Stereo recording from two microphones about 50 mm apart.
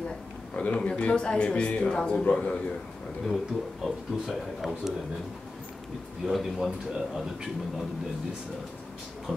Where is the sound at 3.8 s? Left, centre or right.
Centre.